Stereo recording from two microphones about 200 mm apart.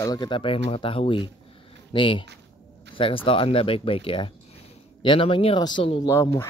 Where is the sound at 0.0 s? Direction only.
20° left (ahead or behind).